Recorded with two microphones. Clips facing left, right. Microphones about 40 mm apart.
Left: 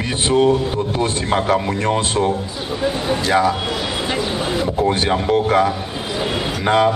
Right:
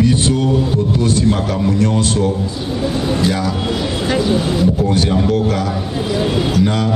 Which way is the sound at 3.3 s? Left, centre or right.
Left.